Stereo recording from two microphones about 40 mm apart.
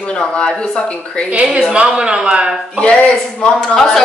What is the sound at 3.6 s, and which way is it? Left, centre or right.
Speech, centre.